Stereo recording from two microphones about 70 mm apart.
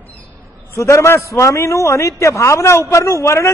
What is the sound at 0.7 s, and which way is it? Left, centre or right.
A man's voice, left.